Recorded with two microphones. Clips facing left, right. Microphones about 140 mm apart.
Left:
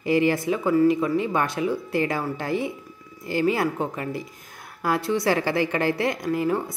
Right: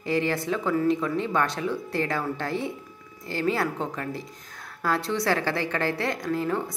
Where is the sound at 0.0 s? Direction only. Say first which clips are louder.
Left 5 dB; 10° left (ahead or behind).